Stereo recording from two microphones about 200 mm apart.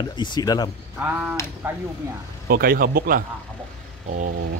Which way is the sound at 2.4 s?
45° right (ahead or behind).